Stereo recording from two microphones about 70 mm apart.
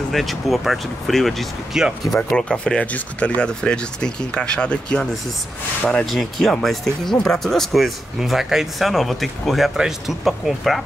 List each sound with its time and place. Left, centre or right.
0.1 s speech: centre
2.3 s speech: centre
6.0 s speech: centre